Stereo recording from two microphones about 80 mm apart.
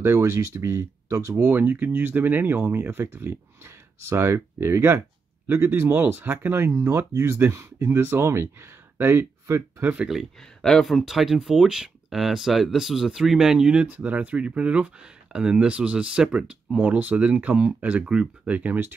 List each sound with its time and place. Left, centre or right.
0.0 s speech: right
1.4 s speech: right
10.6 s speech: centre; by 18.9 s right